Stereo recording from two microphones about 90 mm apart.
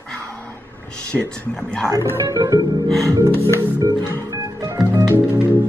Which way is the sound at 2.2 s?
40° right (ahead or behind).